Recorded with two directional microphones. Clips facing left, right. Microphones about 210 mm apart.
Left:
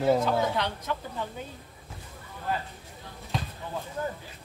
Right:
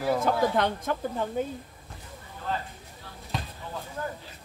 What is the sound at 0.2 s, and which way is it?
A woman's voice, 50° right (ahead or behind).